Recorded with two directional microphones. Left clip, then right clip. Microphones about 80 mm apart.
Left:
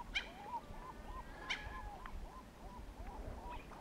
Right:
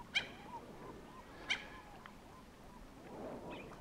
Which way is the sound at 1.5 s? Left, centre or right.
Right.